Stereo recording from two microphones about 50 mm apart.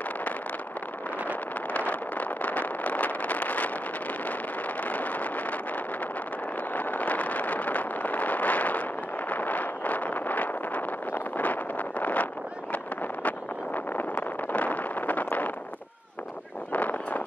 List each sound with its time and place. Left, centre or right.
1.7 s vehicle: left
4.3 s wind noise: left
6.7 s vehicle: left
12.7 s a sound: left
13.7 s vehicle: left
16.7 s a sound: left